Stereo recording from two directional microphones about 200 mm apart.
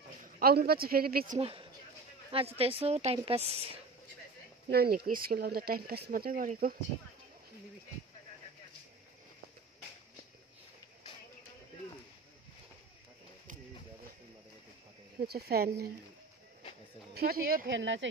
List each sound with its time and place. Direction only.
0.4 s speech: 50° right (ahead or behind)
1.4 s a woman's voice: 30° right (ahead or behind)
4.6 s speech: 50° right (ahead or behind)
15.1 s speech: 50° right (ahead or behind)
17.1 s speech: 50° right (ahead or behind)